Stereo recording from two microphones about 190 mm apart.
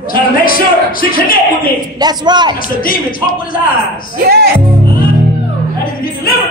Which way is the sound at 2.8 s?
50° left (ahead or behind).